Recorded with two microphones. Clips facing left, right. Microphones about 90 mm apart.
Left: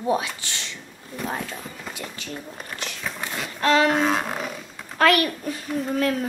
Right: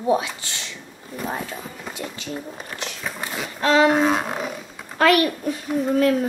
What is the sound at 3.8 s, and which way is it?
A child's voice, centre (ahead or behind).